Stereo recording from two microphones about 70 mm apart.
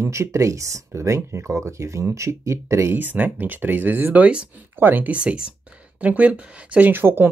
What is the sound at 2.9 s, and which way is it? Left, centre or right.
Speech, right.